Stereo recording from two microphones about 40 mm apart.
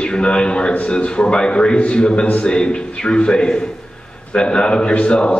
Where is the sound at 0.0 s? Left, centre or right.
Left.